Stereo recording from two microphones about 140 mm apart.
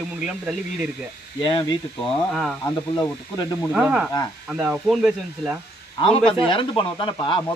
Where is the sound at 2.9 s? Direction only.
30° left (ahead or behind).